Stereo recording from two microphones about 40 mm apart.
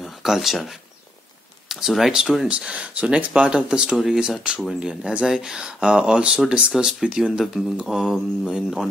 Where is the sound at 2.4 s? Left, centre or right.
Right.